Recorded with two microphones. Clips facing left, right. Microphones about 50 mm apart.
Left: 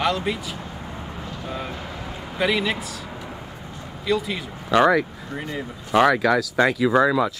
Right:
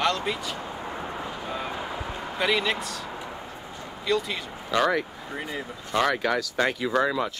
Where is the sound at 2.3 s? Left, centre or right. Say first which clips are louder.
Left 3 dB; centre.